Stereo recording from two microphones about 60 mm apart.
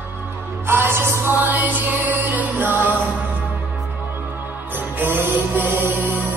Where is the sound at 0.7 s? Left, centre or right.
Right.